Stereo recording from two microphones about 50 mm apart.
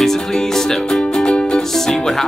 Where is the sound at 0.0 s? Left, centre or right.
Centre.